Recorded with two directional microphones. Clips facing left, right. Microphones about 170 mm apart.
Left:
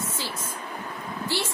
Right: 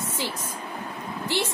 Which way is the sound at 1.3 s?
20° right (ahead or behind).